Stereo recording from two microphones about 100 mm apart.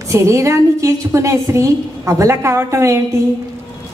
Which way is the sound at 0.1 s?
30° right (ahead or behind).